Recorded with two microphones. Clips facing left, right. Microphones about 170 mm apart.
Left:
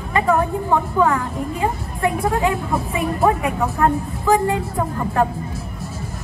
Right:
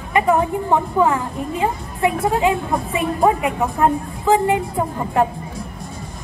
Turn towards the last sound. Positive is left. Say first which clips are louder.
# right 1 dB
turn(degrees=-20)  # may be behind; listen again after turning